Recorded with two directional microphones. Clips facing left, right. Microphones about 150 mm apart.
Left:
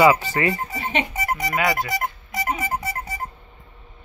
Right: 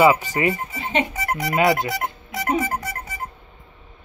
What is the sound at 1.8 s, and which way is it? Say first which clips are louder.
Music: even; centre (ahead or behind).